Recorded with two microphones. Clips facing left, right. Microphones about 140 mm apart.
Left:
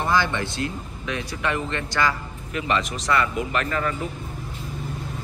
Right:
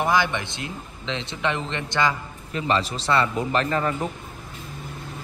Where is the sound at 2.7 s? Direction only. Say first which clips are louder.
Right 1 dB; 30° right (ahead or behind).